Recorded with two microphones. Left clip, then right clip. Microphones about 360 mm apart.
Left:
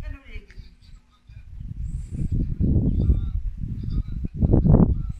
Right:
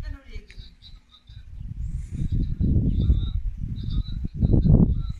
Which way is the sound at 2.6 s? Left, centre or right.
Left.